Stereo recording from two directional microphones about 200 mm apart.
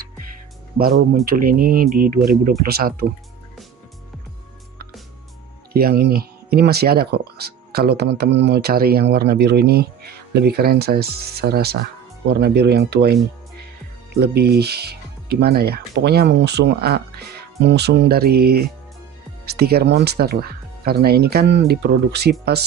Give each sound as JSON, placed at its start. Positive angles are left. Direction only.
{"t": 1.2, "sound": "speech", "side_deg": -45}
{"t": 5.7, "sound": "speech", "side_deg": -50}